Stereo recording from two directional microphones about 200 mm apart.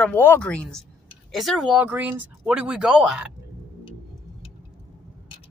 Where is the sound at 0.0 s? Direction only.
10° left (ahead or behind).